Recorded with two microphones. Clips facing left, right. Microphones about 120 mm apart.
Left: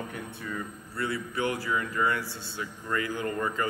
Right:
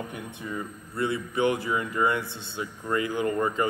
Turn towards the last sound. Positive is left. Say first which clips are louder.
# right 4 dB
turn(degrees=-20)  # may be behind; listen again after turning